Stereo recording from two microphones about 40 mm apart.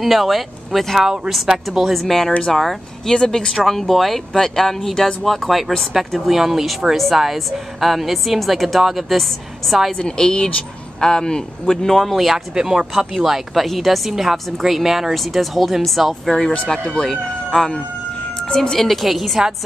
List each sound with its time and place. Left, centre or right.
0.0 s a woman's voice: centre
1.9 s a woman's voice: centre
9.9 s speech: left; by 12.3 s centre
12.3 s a woman's voice: centre
16.6 s a woman's voice: centre